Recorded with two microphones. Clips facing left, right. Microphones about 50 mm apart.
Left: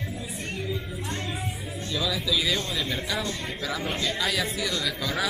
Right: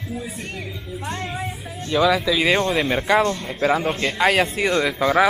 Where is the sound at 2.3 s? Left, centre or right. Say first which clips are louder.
Right 8 dB; right.